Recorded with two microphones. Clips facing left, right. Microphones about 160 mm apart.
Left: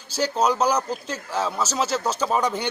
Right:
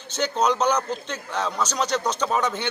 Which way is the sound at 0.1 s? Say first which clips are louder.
Left 1 dB; 10° left (ahead or behind).